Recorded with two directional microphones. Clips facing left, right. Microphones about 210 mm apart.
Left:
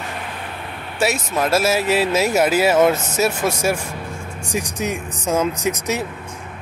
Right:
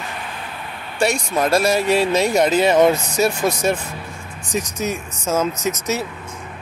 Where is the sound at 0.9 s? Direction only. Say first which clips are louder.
Right 1 dB; 5° left (ahead or behind).